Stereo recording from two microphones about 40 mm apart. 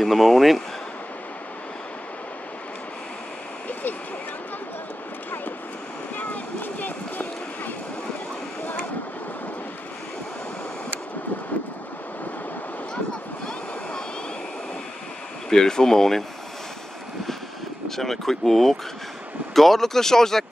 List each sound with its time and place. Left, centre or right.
0.0 s speech: centre
6.1 s a sound: left
15.5 s speech: centre
17.8 s speech: centre